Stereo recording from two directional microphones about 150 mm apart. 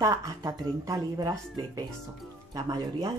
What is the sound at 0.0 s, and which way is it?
Speech, 20° right (ahead or behind).